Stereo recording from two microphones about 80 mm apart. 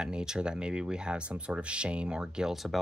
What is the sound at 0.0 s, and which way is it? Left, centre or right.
Speech, centre.